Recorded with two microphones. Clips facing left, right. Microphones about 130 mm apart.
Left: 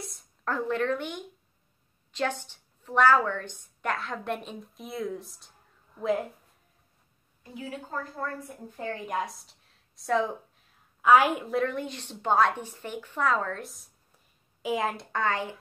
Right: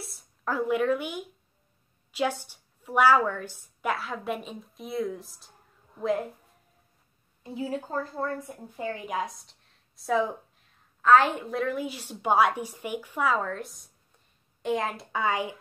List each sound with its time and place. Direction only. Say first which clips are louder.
0.0 s a woman's voice: even; 5° right (ahead or behind)
7.4 s a woman's voice: right 6 dB; 30° right (ahead or behind)
8.7 s a woman's voice: right 1 dB; 5° right (ahead or behind)
11.0 s a woman's voice: even; 10° left (ahead or behind)
11.4 s a woman's voice: left 1 dB; centre (ahead or behind)